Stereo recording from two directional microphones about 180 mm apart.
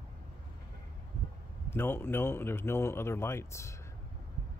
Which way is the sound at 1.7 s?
10° left (ahead or behind).